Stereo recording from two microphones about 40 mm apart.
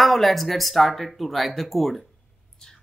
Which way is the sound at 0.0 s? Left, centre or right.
Centre.